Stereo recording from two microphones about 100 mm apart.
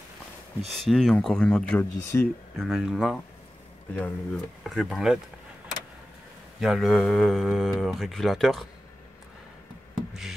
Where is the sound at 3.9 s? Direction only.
15° left (ahead or behind).